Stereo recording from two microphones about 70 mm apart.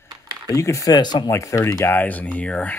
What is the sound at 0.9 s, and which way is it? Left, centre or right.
Speech, left.